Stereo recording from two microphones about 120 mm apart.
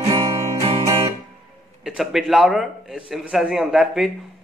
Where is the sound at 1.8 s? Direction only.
5° right (ahead or behind).